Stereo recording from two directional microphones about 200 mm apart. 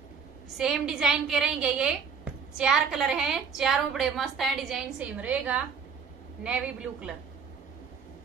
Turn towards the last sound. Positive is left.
turn(degrees=-5)  # may be behind; listen again after turning